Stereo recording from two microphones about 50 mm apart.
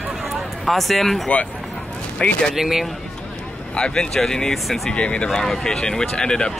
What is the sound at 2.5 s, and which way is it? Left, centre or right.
Speech, centre.